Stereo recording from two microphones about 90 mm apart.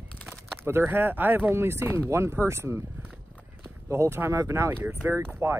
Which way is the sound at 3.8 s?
30° right (ahead or behind).